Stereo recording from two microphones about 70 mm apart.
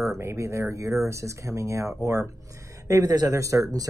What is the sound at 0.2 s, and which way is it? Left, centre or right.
Speech, right.